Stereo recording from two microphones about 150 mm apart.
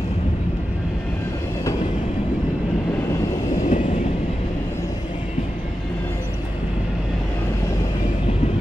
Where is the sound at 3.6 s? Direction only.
55° left (ahead or behind).